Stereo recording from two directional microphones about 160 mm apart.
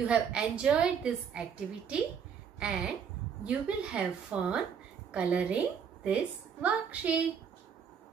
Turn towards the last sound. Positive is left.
turn(degrees=-10)  # may be behind; listen again after turning